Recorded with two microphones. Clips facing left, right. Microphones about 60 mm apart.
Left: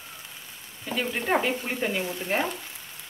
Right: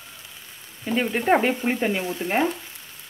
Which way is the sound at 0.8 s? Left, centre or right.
Right.